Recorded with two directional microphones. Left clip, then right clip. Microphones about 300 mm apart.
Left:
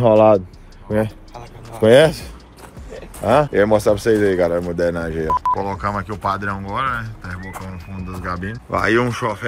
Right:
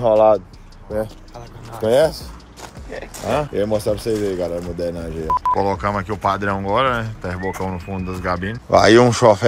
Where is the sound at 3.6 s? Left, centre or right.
Left.